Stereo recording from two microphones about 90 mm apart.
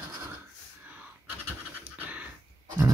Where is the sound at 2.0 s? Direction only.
15° right (ahead or behind).